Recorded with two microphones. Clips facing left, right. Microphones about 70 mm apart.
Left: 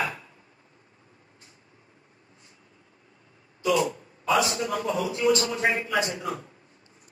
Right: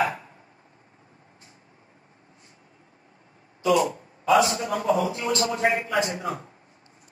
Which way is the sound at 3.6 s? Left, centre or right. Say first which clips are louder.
Right 3 dB; right.